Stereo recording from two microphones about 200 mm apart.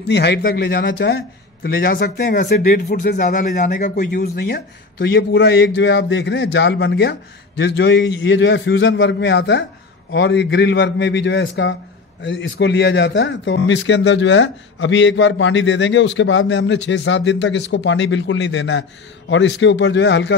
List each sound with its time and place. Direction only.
0.1 s a man's voice: 55° left (ahead or behind); by 4.0 s 40° left (ahead or behind)
4.0 s speech: 50° left (ahead or behind)